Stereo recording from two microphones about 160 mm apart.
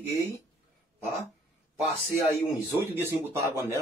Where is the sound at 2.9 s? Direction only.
15° right (ahead or behind).